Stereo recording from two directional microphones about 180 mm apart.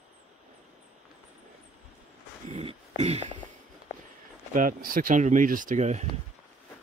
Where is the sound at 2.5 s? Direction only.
35° right (ahead or behind).